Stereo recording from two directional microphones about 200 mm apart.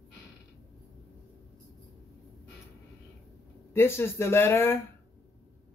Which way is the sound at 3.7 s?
10° left (ahead or behind).